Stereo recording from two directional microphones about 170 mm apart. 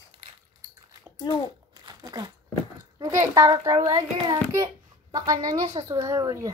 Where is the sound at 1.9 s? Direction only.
20° right (ahead or behind).